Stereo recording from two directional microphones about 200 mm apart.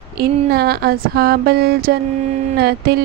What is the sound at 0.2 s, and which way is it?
Speech, 50° right (ahead or behind).